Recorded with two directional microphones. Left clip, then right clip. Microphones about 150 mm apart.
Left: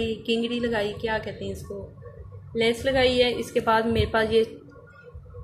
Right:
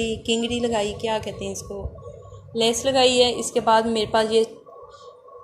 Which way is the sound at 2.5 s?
20° right (ahead or behind).